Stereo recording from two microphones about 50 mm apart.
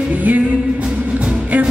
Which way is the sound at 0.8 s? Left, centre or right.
Centre.